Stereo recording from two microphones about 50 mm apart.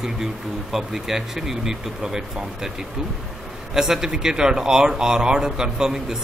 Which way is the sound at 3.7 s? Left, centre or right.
Centre.